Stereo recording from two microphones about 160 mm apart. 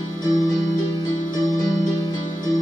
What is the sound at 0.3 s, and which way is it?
Music, 20° left (ahead or behind).